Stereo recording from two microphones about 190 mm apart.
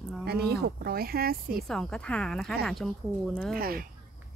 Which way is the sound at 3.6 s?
50° right (ahead or behind).